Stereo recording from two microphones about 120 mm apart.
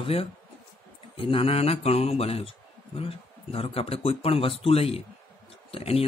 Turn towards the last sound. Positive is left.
turn(degrees=55)  # may be behind; listen again after turning